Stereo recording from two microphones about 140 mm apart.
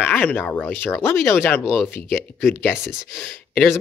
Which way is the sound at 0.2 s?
10° left (ahead or behind).